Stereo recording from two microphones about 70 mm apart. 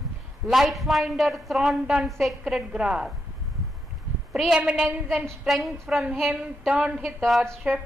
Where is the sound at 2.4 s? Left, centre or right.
Centre.